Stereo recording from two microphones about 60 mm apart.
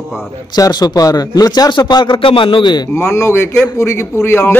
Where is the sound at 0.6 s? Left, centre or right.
Left.